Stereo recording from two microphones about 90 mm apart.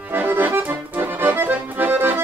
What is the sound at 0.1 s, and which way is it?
Accordion, 20° right (ahead or behind).